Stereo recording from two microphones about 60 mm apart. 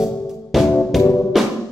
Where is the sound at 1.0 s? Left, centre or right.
Left.